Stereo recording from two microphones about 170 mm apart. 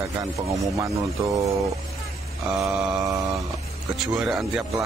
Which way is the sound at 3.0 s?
20° right (ahead or behind).